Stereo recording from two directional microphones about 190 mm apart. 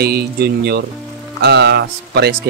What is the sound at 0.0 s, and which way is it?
Speech, 55° right (ahead or behind).